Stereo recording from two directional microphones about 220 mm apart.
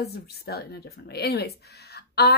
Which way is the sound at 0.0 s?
45° left (ahead or behind).